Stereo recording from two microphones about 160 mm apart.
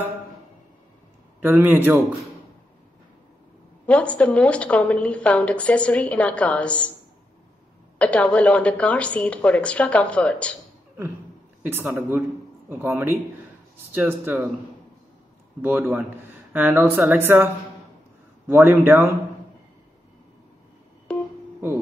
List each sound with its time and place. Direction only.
1.4 s speech: 10° right (ahead or behind)
3.8 s a woman's voice: 10° left (ahead or behind)
8.0 s a woman's voice: 10° left (ahead or behind)
11.6 s speech: 15° right (ahead or behind)
15.6 s speech: 10° right (ahead or behind)
18.5 s speech: 15° right (ahead or behind)
21.1 s telephone dialing: 5° left (ahead or behind)